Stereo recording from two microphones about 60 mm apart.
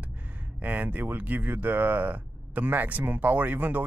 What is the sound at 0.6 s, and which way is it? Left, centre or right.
Speech, right.